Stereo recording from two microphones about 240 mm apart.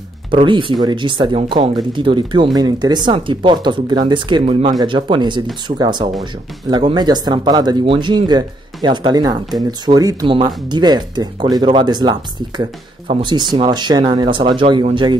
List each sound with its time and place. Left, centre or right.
0.3 s speech: right